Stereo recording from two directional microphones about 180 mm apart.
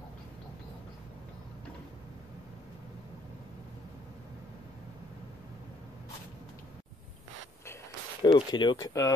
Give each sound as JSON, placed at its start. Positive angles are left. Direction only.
{"t": 8.2, "sound": "speech", "side_deg": 25}